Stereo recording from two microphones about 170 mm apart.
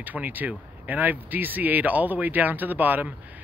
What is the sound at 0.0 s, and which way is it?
Speech, 10° right (ahead or behind).